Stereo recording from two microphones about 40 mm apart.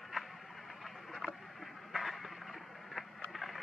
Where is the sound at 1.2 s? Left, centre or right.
Centre.